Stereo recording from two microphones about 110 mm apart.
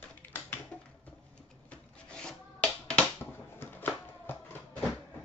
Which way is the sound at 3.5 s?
20° left (ahead or behind).